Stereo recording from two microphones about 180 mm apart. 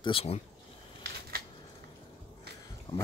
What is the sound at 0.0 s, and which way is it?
Speech, 30° left (ahead or behind).